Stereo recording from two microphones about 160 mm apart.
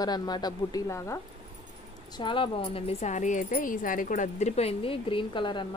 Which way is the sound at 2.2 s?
30° left (ahead or behind).